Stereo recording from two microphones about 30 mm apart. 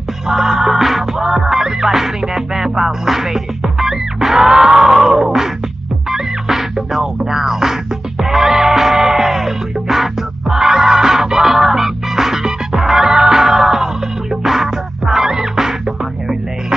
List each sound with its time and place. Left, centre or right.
0.3 s music: centre